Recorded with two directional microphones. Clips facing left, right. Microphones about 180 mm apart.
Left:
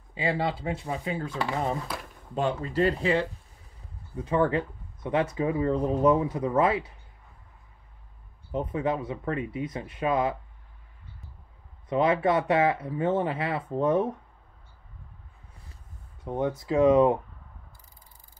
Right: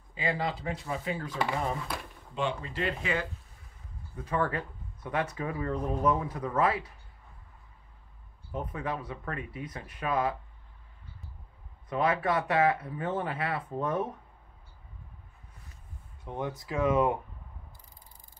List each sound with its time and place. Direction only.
0.1 s speech: 30° left (ahead or behind)
2.3 s speech: 40° left (ahead or behind)
8.5 s speech: 25° left (ahead or behind)
11.9 s speech: 25° left (ahead or behind)
16.3 s speech: 25° left (ahead or behind)